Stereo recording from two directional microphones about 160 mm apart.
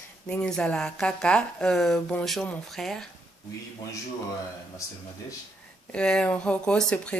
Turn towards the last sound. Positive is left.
turn(degrees=5)  # may be behind; listen again after turning